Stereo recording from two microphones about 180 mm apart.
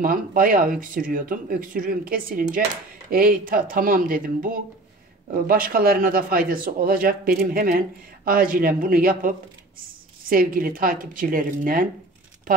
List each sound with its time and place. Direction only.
0.0 s speech: 50° right (ahead or behind)
10.3 s speech: 50° right (ahead or behind)